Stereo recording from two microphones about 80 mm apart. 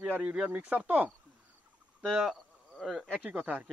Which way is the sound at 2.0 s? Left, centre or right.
Centre.